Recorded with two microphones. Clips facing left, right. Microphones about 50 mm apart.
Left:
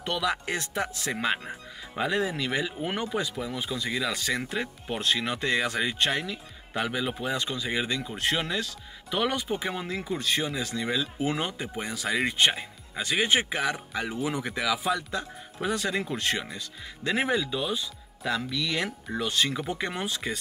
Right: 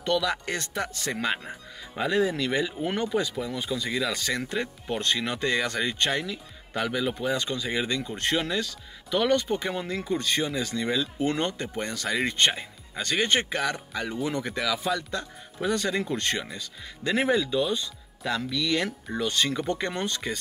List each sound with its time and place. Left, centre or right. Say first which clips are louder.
0.0 s speech: right 2 dB; centre